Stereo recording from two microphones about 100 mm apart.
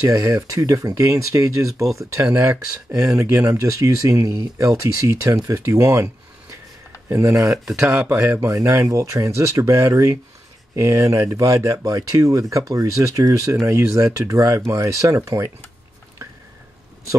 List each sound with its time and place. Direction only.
0.0 s speech: 35° right (ahead or behind)
2.9 s speech: 35° right (ahead or behind)
7.1 s speech: 25° right (ahead or behind)
8.5 s speech: 35° right (ahead or behind)